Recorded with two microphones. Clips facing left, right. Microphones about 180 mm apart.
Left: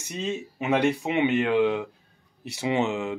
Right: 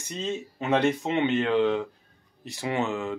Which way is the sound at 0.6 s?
15° left (ahead or behind).